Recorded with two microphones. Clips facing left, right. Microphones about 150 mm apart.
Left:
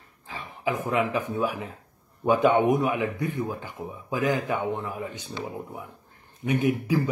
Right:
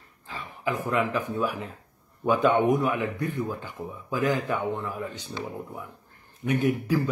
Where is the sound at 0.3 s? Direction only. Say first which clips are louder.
Left 1 dB; 15° left (ahead or behind).